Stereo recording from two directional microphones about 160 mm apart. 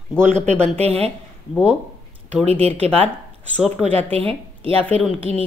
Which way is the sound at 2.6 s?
40° right (ahead or behind).